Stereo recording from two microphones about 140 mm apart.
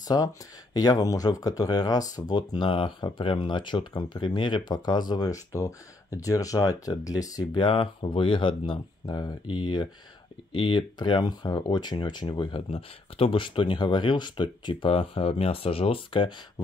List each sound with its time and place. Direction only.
0.1 s speech: 30° left (ahead or behind)
7.6 s speech: 40° left (ahead or behind)